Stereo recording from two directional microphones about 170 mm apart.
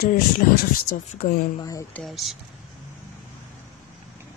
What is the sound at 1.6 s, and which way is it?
Speech, 20° left (ahead or behind).